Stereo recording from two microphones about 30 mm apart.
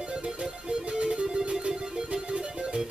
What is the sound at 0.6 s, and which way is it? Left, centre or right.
Music, right.